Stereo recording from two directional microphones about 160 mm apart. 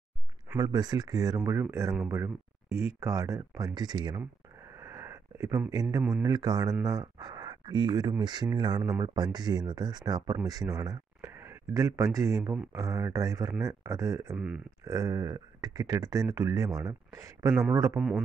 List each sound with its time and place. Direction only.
0.6 s speech: 25° right (ahead or behind)
4.7 s a sound: 20° right (ahead or behind)
6.2 s speech: 25° right (ahead or behind)